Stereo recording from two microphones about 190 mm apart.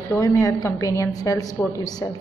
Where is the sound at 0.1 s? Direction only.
15° left (ahead or behind).